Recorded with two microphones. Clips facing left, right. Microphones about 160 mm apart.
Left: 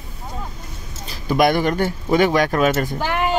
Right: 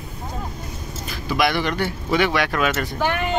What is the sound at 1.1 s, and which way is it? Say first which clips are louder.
Speech: left 5 dB; 45° left (ahead or behind).